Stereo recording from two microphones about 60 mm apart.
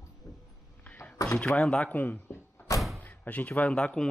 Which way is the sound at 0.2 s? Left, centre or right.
Left.